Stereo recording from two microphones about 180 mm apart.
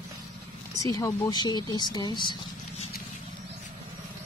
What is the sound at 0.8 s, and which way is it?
Speech, 20° left (ahead or behind).